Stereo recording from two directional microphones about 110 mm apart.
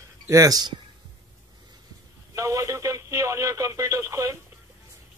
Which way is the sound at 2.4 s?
30° right (ahead or behind).